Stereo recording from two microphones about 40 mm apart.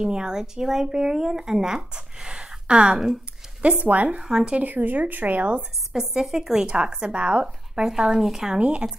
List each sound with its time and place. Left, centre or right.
0.0 s speech: right
3.8 s speech: right
4.2 s a woman's voice: centre
4.6 s speech: right
5.6 s a woman's voice: centre
6.6 s a woman's voice: right
7.7 s a woman's voice: centre
8.5 s a woman's voice: right